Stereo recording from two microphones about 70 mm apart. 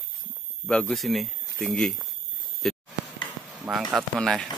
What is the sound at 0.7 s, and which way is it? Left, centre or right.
Speech, centre.